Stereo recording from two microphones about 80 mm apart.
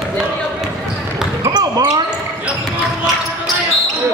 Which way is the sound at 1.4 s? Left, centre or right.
Right.